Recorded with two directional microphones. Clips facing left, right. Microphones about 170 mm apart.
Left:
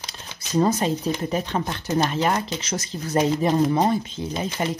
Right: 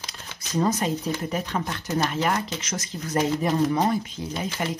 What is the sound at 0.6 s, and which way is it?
Speech, 30° left (ahead or behind).